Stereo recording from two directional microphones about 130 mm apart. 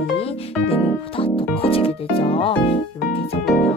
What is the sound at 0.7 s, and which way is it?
Music, 45° left (ahead or behind).